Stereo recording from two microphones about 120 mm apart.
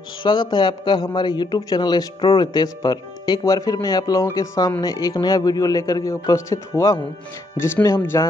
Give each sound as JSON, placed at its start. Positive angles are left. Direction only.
{"t": 0.2, "sound": "a man's voice", "side_deg": 40}